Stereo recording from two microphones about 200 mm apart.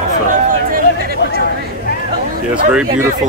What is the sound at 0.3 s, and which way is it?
Chatter, 45° right (ahead or behind).